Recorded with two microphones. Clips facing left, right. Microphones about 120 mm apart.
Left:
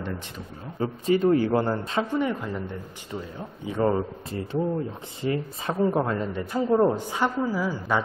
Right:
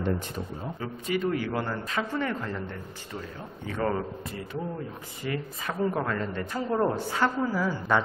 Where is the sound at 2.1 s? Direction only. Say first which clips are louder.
Left 4 dB; 15° left (ahead or behind).